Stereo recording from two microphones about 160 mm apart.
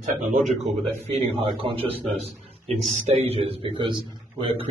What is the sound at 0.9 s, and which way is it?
A man's voice, 40° right (ahead or behind).